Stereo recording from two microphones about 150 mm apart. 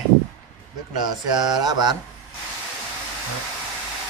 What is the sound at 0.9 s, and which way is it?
A man's voice, 30° right (ahead or behind).